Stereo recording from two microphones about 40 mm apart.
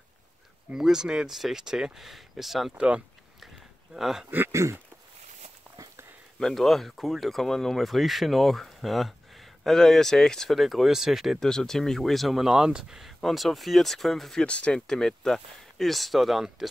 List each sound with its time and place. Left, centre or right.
0.7 s speech: centre
1.3 s speech: centre
1.6 s speech: centre
2.0 s speech: centre
3.9 s speech: centre
4.3 s a sound: right
6.4 s speech: centre
10.5 s speech: centre
11.3 s speech: centre
12.4 s speech: centre
13.0 s speech: centre
14.4 s speech: left
14.9 s speech: centre